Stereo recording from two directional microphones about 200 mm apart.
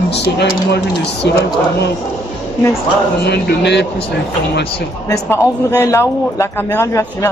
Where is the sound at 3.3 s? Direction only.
55° left (ahead or behind).